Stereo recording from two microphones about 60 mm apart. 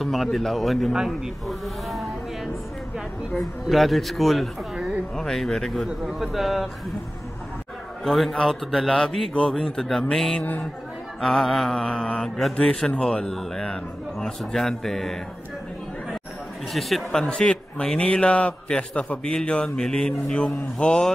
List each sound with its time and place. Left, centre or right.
0.0 s speech: centre
0.9 s speech: centre
1.5 s vehicle: centre
3.3 s speech: centre
4.7 s a sound: centre
5.1 s a man's voice: centre
8.0 s a man's voice: centre
10.4 s speech: left
11.1 s a man's voice: centre
16.7 s speech: centre
17.2 s a man's voice: centre